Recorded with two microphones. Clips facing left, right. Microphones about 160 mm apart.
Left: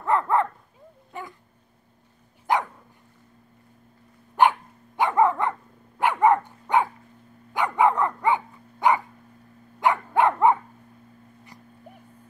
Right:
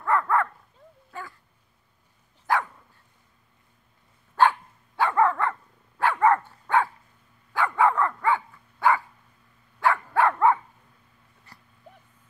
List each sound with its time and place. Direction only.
0.0 s dog: 20° left (ahead or behind)
2.5 s dog: 20° left (ahead or behind)
4.4 s dog: 15° left (ahead or behind)